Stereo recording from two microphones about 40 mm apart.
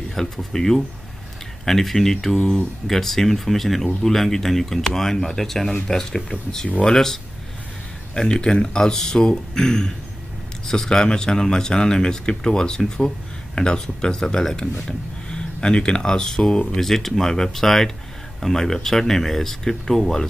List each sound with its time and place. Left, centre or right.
0.1 s speech: centre